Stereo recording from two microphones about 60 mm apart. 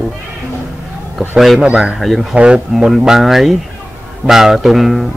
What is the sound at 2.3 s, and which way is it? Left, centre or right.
Speech, centre.